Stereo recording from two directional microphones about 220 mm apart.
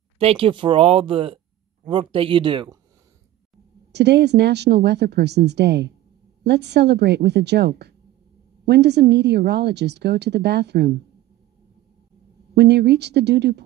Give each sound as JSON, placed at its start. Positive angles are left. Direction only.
{"t": 0.2, "sound": "speech", "side_deg": -25}
{"t": 3.9, "sound": "a woman's voice", "side_deg": -50}
{"t": 12.5, "sound": "a woman's voice", "side_deg": -50}